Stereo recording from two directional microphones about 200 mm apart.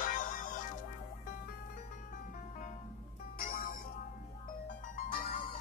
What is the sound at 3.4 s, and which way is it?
Music, 45° left (ahead or behind).